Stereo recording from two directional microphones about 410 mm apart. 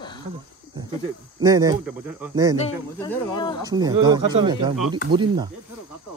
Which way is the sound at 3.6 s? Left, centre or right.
Centre.